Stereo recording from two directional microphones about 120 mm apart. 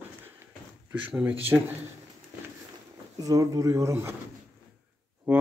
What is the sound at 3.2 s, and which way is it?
Speech, 30° right (ahead or behind).